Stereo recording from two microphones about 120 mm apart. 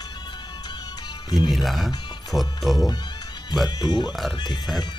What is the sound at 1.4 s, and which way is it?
Speech, centre (ahead or behind).